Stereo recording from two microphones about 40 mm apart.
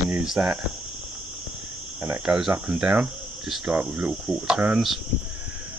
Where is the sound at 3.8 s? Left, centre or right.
Right.